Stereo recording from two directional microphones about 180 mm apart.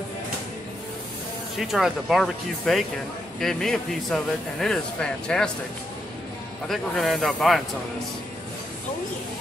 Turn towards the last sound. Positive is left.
turn(degrees=0)  # may be behind; listen again after turning